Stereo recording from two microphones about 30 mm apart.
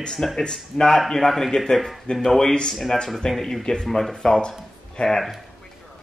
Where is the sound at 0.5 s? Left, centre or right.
Centre.